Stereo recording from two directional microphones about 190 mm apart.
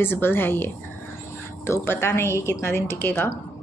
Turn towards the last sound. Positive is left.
turn(degrees=10)  # may be behind; listen again after turning